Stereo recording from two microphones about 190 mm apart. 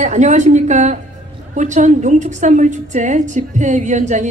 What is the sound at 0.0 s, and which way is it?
A woman's voice, 40° right (ahead or behind).